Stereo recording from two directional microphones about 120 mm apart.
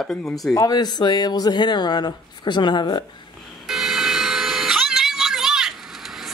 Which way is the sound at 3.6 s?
5° right (ahead or behind).